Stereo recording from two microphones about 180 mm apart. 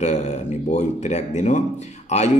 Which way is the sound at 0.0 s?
40° left (ahead or behind).